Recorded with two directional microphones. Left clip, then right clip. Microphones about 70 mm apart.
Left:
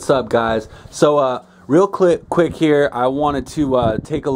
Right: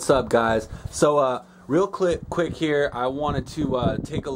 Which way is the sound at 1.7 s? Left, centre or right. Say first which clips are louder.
Left 8 dB; left.